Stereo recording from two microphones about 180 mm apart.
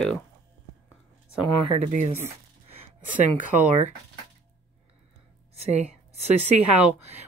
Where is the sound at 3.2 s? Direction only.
40° right (ahead or behind).